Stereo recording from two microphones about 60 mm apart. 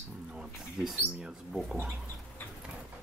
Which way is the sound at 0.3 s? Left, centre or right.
Centre.